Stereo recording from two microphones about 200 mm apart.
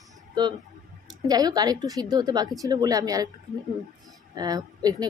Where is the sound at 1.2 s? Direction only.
20° right (ahead or behind).